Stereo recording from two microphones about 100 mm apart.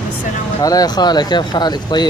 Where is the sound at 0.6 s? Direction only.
35° left (ahead or behind).